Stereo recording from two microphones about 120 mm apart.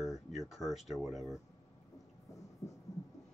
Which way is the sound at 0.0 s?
Centre (ahead or behind).